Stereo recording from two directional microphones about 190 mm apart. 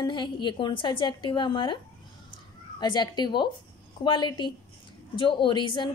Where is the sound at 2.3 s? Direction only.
20° left (ahead or behind).